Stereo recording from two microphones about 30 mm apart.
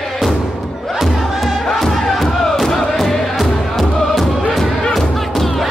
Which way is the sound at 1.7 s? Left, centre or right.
Centre.